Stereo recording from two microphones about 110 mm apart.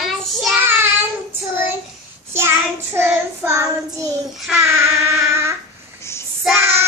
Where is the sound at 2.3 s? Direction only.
20° right (ahead or behind).